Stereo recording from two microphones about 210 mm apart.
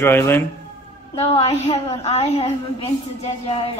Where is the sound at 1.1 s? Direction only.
30° left (ahead or behind).